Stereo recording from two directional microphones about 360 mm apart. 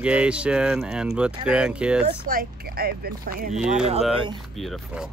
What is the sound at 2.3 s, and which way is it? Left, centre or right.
Speech, right.